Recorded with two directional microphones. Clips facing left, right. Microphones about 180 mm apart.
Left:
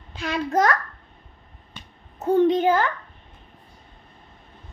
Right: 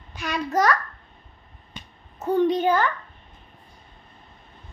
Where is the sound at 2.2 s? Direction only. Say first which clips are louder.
Left 3 dB; 20° left (ahead or behind).